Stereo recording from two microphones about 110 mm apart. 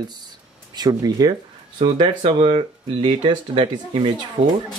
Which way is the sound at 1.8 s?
50° right (ahead or behind).